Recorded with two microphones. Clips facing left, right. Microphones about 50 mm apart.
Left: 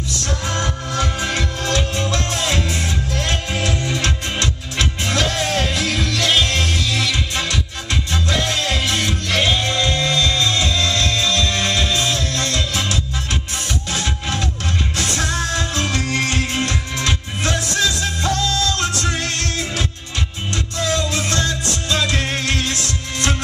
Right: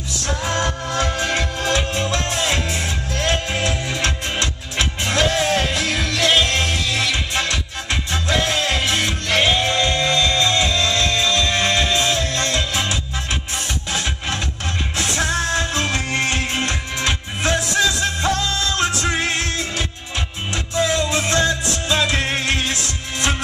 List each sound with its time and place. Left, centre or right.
0.2 s music: centre